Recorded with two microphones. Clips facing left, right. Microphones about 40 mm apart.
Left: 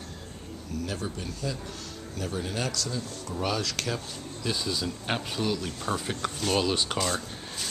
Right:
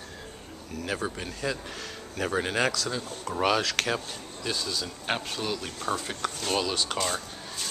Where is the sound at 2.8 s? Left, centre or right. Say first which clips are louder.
Right 2 dB; right.